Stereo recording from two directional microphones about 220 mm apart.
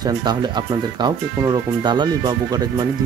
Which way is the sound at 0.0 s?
20° right (ahead or behind).